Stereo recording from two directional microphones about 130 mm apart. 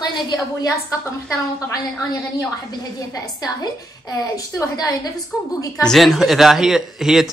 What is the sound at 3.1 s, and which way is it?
A woman's voice, 30° left (ahead or behind).